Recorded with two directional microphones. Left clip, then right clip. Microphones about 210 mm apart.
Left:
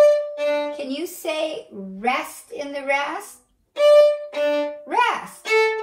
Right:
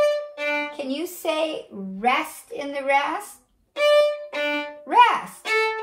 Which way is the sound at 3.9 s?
30° right (ahead or behind).